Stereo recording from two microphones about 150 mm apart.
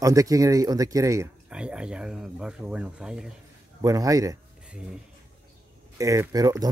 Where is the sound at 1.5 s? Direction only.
5° right (ahead or behind).